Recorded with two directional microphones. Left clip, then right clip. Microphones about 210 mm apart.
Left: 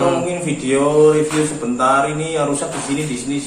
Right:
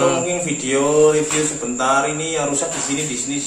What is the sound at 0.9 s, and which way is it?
Speech, 15° right (ahead or behind).